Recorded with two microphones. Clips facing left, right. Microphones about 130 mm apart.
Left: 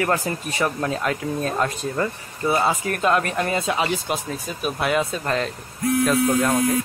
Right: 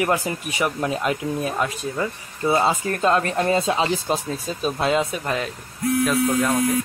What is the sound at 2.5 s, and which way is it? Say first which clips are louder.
Speech: right 1 dB; 20° right (ahead or behind).